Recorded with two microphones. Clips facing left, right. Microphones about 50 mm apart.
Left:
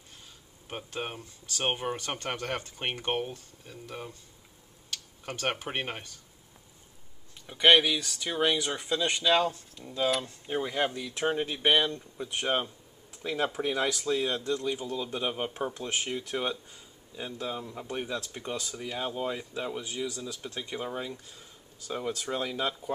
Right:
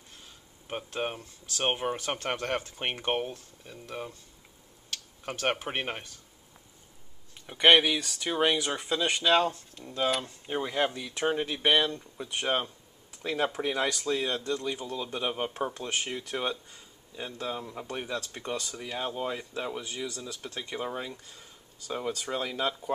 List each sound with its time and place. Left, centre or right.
0.7 s speech: centre
5.2 s speech: centre
7.4 s speech: centre